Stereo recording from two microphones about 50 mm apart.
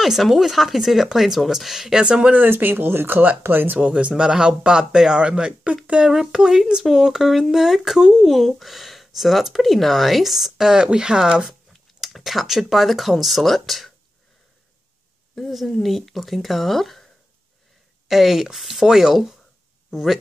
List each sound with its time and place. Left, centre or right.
0.0 s speech: centre
2.0 s speech: right
2.3 s speech: right
3.8 s speech: centre
12.0 s speech: centre
15.3 s speech: centre
18.0 s speech: centre